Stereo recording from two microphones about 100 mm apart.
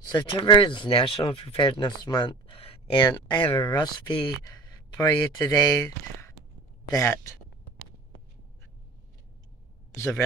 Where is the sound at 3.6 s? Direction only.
40° left (ahead or behind).